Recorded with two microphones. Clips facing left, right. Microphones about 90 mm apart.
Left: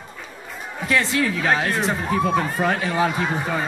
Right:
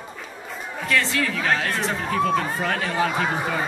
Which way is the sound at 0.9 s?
15° left (ahead or behind).